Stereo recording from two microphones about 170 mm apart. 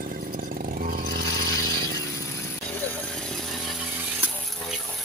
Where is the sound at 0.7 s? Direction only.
60° right (ahead or behind).